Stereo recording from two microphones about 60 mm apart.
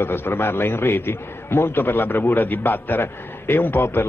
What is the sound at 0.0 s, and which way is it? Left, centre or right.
A man's voice, left.